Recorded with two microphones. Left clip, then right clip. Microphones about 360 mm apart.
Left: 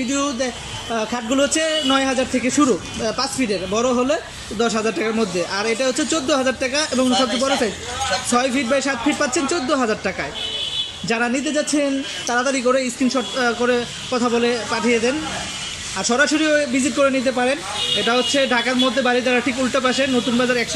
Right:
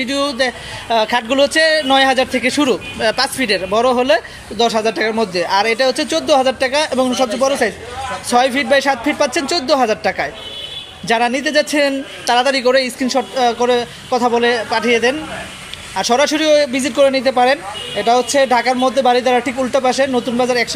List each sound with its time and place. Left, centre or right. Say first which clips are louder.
0.1 s a man's voice: right 5 dB; centre
8.3 s a man's voice: right 8 dB; centre